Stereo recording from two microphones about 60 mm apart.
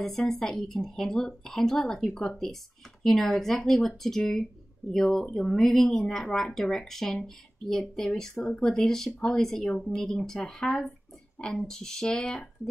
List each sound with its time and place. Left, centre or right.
0.0 s speech: centre